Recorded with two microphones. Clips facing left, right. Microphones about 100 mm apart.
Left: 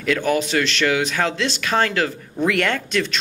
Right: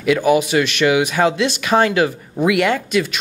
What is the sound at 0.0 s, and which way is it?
Speech, 10° right (ahead or behind).